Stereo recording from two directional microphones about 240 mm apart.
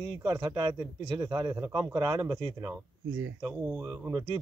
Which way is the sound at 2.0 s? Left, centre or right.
Centre.